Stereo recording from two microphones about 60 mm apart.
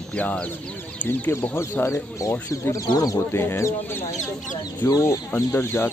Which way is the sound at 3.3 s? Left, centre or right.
Left.